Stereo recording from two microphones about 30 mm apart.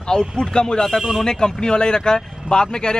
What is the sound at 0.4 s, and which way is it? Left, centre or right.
A man's voice, left.